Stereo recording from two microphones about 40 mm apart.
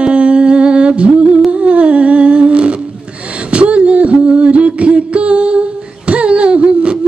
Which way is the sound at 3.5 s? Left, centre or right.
Right.